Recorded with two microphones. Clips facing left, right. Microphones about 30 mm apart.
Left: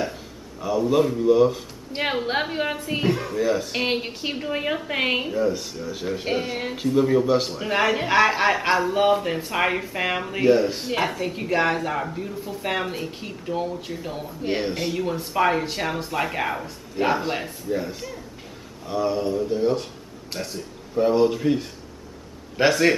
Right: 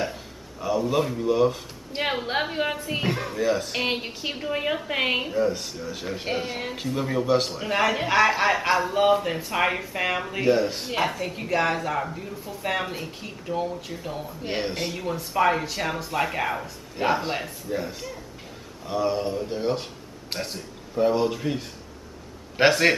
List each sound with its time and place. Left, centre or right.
0.0 s a man's voice: centre; by 20.5 s right
20.9 s speech: centre
22.6 s a man's voice: centre